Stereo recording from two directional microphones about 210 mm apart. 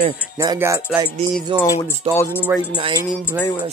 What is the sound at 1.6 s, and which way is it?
Speech, 15° left (ahead or behind).